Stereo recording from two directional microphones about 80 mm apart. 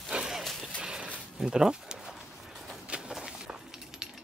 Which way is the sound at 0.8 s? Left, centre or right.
Centre.